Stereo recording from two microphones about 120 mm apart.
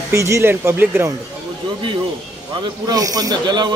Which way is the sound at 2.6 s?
30° right (ahead or behind).